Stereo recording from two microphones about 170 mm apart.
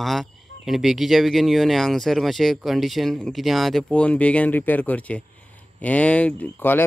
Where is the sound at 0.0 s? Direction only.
Centre (ahead or behind).